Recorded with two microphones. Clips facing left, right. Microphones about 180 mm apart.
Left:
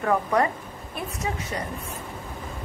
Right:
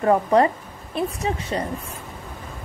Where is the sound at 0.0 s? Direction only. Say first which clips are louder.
Right 5 dB; 30° right (ahead or behind).